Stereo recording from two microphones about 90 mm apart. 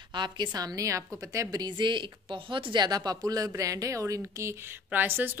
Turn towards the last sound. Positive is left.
turn(degrees=-25)  # may be behind; listen again after turning